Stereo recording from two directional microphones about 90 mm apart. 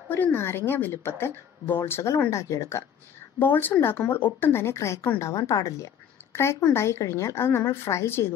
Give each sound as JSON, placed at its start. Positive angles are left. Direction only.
{"t": 0.1, "sound": "speech", "side_deg": 25}
{"t": 3.3, "sound": "speech", "side_deg": 20}